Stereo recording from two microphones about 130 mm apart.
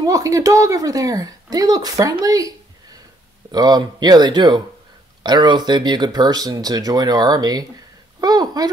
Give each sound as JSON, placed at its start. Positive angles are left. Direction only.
{"t": 0.0, "sound": "speech", "side_deg": -25}
{"t": 3.5, "sound": "speech", "side_deg": -30}